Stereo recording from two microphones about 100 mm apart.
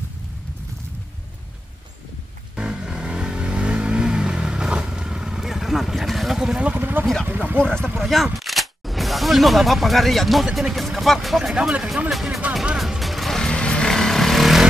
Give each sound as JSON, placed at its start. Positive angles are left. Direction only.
{"t": 2.5, "sound": "vehicle", "side_deg": -10}
{"t": 7.2, "sound": "a sound", "side_deg": -20}
{"t": 7.6, "sound": "speech", "side_deg": 10}
{"t": 12.5, "sound": "vehicle", "side_deg": 0}